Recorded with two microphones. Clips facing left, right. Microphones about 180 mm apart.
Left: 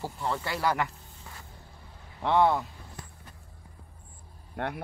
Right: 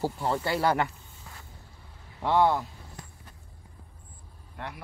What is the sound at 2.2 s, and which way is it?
Speech, centre (ahead or behind).